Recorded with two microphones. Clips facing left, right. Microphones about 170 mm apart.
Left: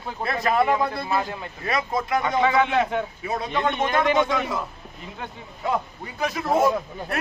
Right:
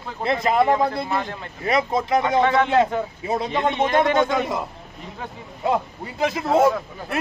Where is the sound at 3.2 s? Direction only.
25° right (ahead or behind).